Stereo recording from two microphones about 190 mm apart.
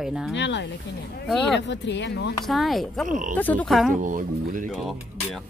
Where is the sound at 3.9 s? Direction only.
45° right (ahead or behind).